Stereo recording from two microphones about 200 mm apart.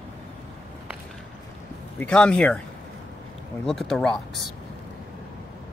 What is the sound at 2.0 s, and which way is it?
Speech, 5° left (ahead or behind).